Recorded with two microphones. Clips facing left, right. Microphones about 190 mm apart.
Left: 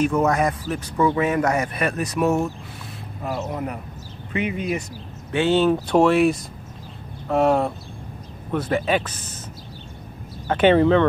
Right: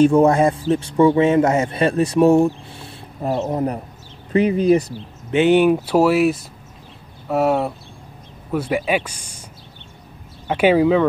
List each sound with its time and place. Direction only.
0.0 s speech: 30° right (ahead or behind)
5.3 s speech: 15° right (ahead or behind)
10.5 s speech: 10° right (ahead or behind)